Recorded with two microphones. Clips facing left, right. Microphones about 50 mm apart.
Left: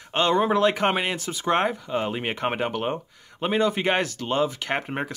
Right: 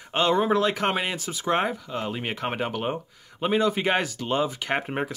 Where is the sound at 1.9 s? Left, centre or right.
Centre.